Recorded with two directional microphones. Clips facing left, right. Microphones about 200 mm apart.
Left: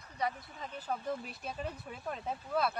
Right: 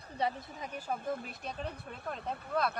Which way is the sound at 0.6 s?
10° right (ahead or behind).